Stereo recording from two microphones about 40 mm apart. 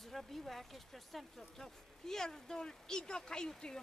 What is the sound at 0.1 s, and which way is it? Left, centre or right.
Speech, centre.